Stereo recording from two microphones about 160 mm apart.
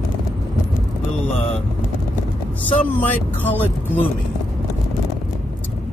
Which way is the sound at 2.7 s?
10° left (ahead or behind).